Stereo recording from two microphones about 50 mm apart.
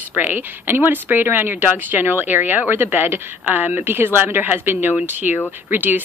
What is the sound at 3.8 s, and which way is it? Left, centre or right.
Speech, right.